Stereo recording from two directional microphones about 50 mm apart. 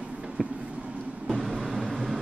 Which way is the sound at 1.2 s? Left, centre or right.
Centre.